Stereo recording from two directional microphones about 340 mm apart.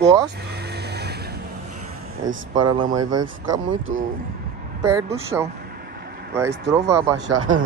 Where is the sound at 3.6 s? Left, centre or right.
Right.